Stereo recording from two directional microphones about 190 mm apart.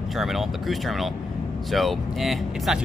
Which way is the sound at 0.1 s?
Centre (ahead or behind).